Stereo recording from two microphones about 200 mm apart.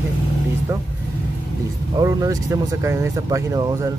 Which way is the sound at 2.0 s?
15° right (ahead or behind).